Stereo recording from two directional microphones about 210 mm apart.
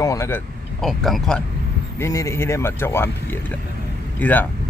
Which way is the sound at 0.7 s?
Centre (ahead or behind).